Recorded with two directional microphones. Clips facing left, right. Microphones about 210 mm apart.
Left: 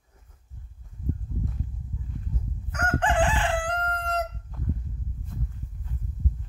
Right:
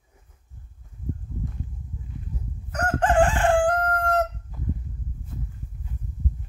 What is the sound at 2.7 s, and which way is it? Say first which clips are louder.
Crowing: right 4 dB; 40° right (ahead or behind).